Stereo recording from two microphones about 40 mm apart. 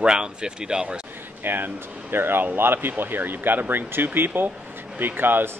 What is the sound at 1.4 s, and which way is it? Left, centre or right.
Speech, right.